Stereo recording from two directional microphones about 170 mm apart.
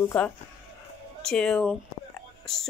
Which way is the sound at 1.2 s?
5° left (ahead or behind).